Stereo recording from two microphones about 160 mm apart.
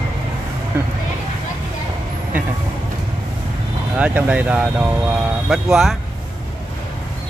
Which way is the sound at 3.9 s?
10° right (ahead or behind).